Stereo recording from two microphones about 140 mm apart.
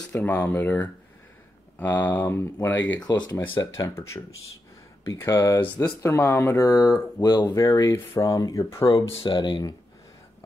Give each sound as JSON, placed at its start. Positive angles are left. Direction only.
{"t": 0.1, "sound": "speech", "side_deg": 20}
{"t": 3.0, "sound": "speech", "side_deg": 30}
{"t": 8.8, "sound": "speech", "side_deg": 35}